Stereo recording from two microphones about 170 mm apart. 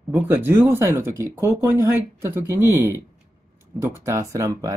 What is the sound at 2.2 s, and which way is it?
Speech, 15° right (ahead or behind).